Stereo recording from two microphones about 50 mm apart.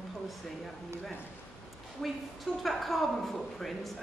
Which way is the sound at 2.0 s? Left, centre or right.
Centre.